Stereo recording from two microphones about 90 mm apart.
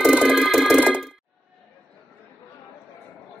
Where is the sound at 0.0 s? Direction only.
5° right (ahead or behind).